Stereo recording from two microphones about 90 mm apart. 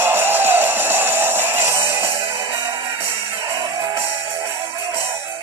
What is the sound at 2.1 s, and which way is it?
Music, 80° right.